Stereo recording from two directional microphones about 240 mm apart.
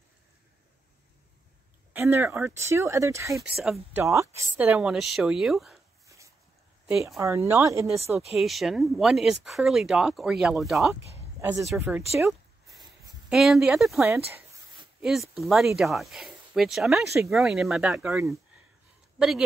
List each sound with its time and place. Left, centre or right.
2.0 s speech: centre
6.0 s a sound: centre
6.9 s speech: centre
7.2 s speech: centre
8.1 s speech: centre
11.1 s a sound: centre
11.7 s speech: centre
12.6 s a sound: centre
13.3 s speech: centre